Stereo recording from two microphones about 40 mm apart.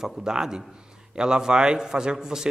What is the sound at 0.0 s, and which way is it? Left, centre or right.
A man's voice, centre.